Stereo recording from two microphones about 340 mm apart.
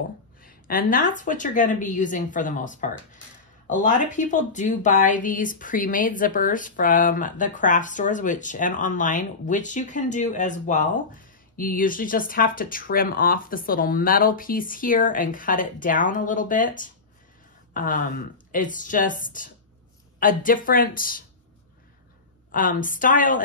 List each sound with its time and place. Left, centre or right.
0.4 s speech: left
22.5 s speech: left